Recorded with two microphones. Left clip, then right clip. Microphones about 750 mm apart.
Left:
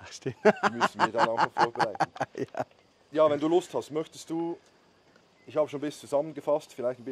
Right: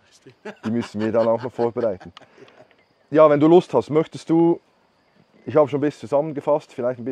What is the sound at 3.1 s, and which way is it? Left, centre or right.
Speech, right.